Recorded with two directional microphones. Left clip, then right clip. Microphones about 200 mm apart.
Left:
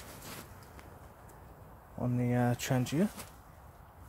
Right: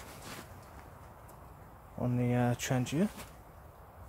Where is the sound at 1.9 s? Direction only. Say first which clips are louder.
Even; centre (ahead or behind); by 3.1 s 20° left (ahead or behind).